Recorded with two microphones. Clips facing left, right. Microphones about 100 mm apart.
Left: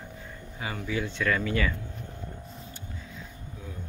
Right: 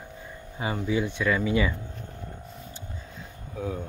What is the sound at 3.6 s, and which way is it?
Speech, 70° right (ahead or behind).